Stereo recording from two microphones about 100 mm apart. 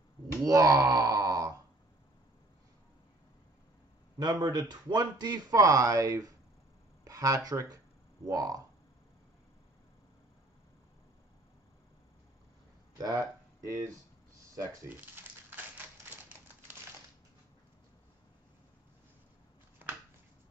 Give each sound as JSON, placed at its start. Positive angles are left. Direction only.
{"t": 0.4, "sound": "speech", "side_deg": -35}
{"t": 4.2, "sound": "speech", "side_deg": -40}
{"t": 12.9, "sound": "speech", "side_deg": -35}
{"t": 14.9, "sound": "a sound", "side_deg": -20}